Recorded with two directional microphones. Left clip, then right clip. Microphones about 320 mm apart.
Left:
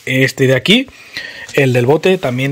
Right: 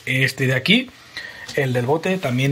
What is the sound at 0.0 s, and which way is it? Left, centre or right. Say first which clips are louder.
Speech: left 7 dB; centre.